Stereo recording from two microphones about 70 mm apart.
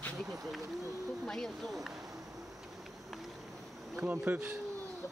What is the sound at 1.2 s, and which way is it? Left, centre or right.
Speech, centre.